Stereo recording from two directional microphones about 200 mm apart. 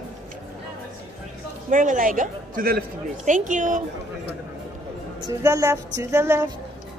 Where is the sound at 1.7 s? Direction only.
40° right (ahead or behind).